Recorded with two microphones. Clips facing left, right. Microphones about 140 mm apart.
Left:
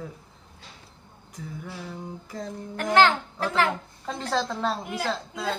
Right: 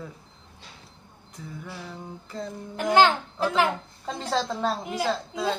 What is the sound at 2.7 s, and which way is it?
A child's voice, 15° right (ahead or behind).